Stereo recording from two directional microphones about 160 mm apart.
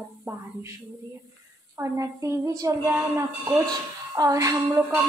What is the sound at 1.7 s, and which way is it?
A woman's voice, 20° right (ahead or behind).